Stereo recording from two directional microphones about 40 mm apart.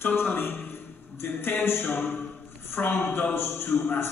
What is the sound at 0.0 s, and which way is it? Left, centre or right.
A man's voice, left.